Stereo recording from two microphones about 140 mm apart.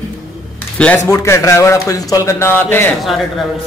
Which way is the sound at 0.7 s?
10° left (ahead or behind).